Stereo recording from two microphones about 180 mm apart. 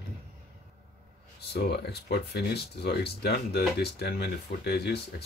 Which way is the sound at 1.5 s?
65° left (ahead or behind).